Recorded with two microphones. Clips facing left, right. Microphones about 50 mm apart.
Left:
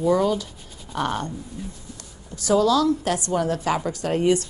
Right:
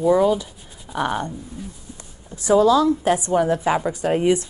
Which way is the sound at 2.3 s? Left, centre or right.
Right.